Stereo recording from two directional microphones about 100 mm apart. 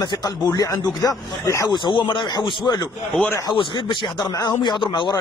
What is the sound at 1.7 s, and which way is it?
Speech, 55° left (ahead or behind).